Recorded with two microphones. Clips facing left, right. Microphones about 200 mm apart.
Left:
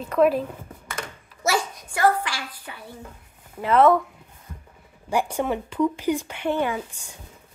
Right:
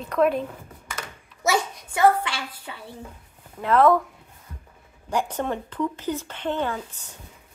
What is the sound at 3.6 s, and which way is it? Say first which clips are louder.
Speech: left 1 dB; centre (ahead or behind).